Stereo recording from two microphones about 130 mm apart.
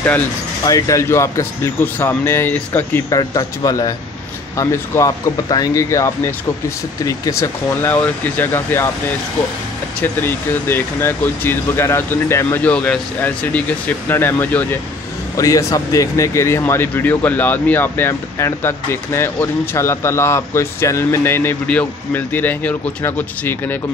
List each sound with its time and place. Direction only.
0.7 s speech: 25° left (ahead or behind)
3.1 s speech: 30° left (ahead or behind)
10.2 s speech: 15° left (ahead or behind)
15.3 s speech: 25° left (ahead or behind)